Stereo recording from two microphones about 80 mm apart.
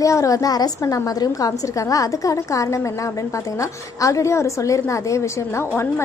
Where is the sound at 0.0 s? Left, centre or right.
Left.